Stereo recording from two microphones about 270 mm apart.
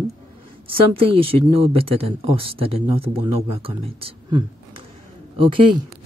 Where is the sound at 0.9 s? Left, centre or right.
Right.